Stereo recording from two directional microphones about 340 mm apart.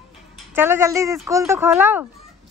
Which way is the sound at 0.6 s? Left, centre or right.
Centre.